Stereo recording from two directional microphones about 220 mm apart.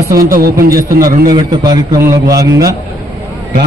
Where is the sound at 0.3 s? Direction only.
40° right (ahead or behind).